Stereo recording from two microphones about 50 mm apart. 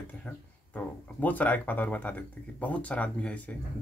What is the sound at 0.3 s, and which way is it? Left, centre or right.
Speech, left.